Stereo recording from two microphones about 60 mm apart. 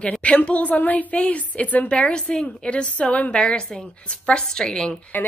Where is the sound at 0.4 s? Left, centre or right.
Left.